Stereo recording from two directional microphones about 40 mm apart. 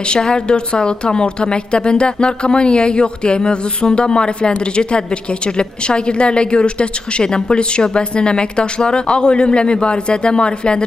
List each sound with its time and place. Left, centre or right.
0.1 s a woman's voice: left